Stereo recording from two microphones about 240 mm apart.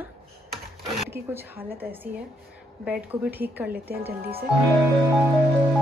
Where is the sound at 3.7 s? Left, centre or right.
Right.